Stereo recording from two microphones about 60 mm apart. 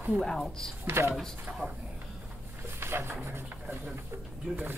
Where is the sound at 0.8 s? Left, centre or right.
Right.